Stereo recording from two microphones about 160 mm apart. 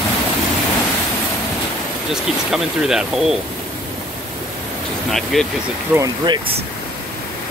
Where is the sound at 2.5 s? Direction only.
5° right (ahead or behind).